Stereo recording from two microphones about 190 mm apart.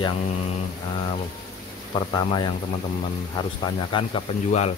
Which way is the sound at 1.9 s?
25° left (ahead or behind).